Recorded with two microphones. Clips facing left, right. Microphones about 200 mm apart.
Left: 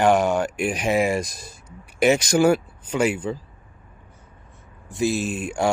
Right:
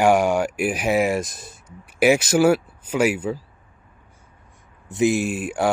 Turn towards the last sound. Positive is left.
turn(degrees=-5)  # may be behind; listen again after turning